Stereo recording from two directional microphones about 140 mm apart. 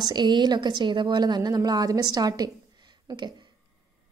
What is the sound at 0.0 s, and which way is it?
A woman's voice, 30° right (ahead or behind).